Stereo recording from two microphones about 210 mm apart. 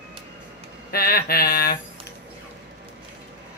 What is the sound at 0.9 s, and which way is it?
Mantra, 45° left (ahead or behind).